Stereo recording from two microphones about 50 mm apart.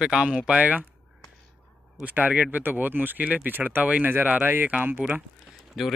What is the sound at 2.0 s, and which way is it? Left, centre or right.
Speech, right.